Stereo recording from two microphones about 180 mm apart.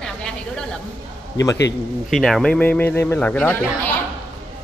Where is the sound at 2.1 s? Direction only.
Centre (ahead or behind).